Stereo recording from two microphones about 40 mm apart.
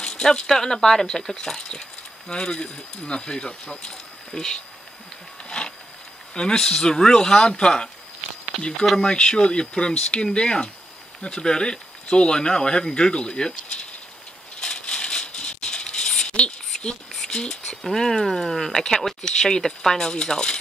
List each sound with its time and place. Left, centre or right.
0.0 s speech: centre
6.3 s speech: centre
8.9 s speech: left
14.6 s rattle: centre
15.0 s a sound: centre
16.7 s a sound: centre
17.3 s speech: centre